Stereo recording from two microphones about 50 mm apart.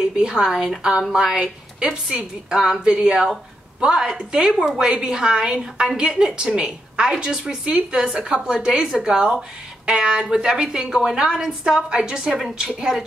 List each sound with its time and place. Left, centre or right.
0.0 s a woman's voice: centre